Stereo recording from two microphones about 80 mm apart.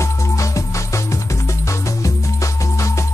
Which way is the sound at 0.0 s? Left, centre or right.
Left.